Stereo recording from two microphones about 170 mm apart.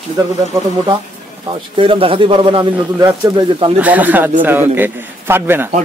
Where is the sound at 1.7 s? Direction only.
30° right (ahead or behind).